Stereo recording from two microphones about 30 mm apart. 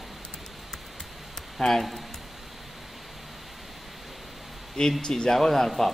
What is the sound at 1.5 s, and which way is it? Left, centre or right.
Speech, centre.